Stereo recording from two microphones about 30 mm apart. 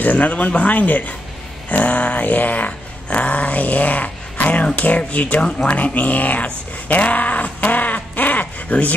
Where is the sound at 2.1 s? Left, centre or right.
Left.